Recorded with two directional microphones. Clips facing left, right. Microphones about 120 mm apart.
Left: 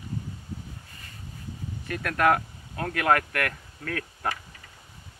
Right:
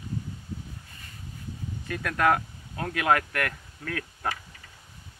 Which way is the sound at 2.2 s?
Centre (ahead or behind).